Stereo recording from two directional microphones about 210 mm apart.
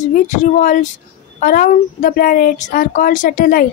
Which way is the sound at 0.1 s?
35° left (ahead or behind).